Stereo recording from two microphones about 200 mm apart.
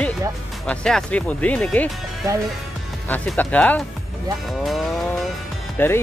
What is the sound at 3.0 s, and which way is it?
Speech, 10° left (ahead or behind).